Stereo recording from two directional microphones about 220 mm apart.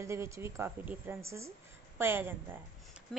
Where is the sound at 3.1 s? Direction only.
5° left (ahead or behind).